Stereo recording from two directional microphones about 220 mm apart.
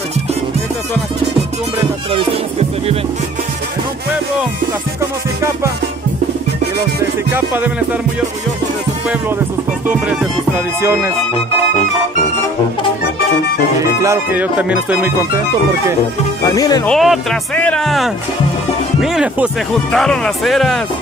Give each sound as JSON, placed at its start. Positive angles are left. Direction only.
{"t": 7.3, "sound": "music", "side_deg": -10}
{"t": 9.8, "sound": "music", "side_deg": -5}
{"t": 13.7, "sound": "music", "side_deg": -15}
{"t": 16.5, "sound": "speech", "side_deg": 15}
{"t": 16.8, "sound": "speech", "side_deg": 0}